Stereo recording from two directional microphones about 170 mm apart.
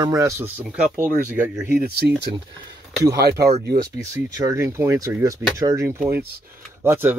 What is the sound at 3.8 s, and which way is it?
Speech, 20° right (ahead or behind).